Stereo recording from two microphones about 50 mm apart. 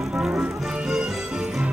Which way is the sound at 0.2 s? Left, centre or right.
Right.